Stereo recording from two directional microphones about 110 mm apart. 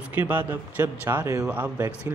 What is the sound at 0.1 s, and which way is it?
Speech, 20° right (ahead or behind).